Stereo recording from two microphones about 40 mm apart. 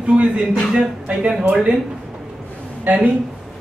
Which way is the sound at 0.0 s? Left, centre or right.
Right.